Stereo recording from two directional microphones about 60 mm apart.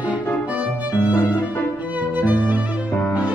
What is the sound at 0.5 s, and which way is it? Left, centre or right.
Music, right.